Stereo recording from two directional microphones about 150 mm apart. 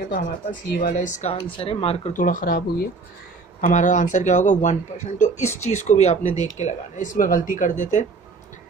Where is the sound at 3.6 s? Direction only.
55° left (ahead or behind).